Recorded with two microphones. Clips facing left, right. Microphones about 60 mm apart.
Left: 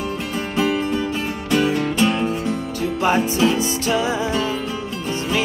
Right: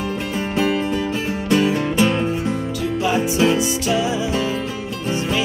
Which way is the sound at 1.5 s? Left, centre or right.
Centre.